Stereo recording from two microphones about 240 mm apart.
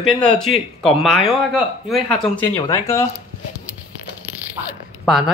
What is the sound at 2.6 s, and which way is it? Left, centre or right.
Speech, centre.